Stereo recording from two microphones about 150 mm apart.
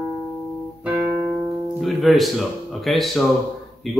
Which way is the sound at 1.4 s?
20° right (ahead or behind).